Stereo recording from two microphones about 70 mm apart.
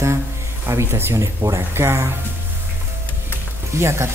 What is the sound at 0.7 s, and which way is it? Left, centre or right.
Speech, right.